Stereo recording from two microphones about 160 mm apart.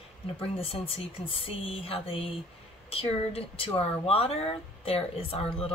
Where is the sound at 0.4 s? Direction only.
35° left (ahead or behind).